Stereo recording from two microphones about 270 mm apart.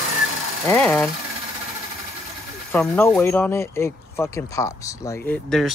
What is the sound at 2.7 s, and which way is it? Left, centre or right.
Speech, centre.